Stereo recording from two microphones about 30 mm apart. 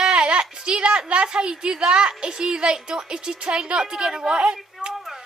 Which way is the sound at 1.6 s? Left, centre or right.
Right.